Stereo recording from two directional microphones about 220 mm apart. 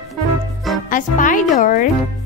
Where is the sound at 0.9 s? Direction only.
35° left (ahead or behind).